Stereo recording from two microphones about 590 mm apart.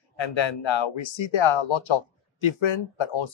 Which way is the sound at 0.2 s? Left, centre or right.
Left.